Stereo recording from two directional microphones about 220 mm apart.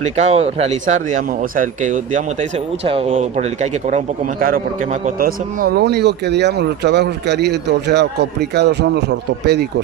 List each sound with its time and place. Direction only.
0.0 s speech: 30° right (ahead or behind)
3.9 s speech: 40° right (ahead or behind)